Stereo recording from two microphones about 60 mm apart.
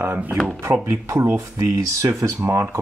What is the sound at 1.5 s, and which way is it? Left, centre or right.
Speech, right.